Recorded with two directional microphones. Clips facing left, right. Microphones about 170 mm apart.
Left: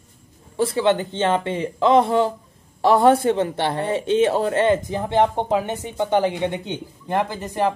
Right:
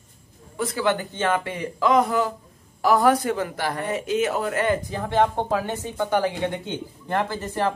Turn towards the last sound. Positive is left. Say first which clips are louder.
# left 2 dB
turn(degrees=15)  # may be behind; listen again after turning